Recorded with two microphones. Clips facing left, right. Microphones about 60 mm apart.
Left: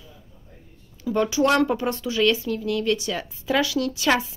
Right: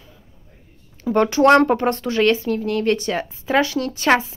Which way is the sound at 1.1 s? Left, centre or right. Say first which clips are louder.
Right 6 dB; right.